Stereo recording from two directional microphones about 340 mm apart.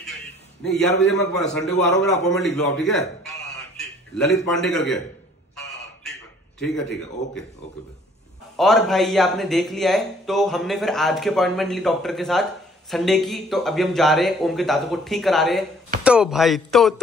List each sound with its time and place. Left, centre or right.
0.7 s a man's voice: centre
8.5 s a man's voice: centre